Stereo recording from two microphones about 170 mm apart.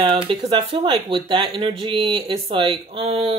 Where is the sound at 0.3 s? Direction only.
30° right (ahead or behind).